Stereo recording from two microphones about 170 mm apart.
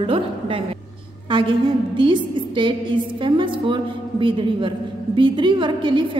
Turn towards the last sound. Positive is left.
turn(degrees=-30)  # may be behind; listen again after turning